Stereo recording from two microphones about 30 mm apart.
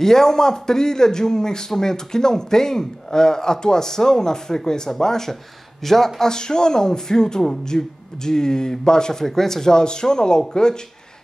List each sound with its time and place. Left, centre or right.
0.0 s speech: centre
6.2 s speech: left
9.2 s speech: centre
9.8 s speech: left